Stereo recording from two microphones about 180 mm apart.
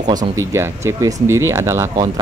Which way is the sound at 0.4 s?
15° right (ahead or behind).